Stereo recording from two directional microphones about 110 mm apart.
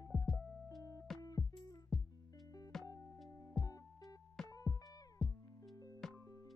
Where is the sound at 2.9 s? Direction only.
30° left (ahead or behind).